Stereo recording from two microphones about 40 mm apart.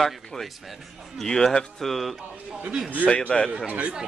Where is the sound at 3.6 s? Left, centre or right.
Right.